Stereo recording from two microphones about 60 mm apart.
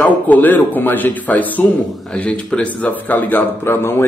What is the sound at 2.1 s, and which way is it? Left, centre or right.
Speech, centre.